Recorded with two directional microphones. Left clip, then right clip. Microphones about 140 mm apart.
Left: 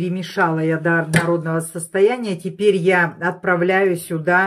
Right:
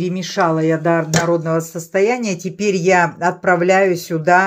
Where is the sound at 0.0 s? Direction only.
20° right (ahead or behind).